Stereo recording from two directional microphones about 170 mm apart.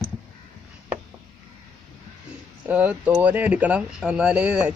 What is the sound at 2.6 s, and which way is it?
Speech, 10° right (ahead or behind).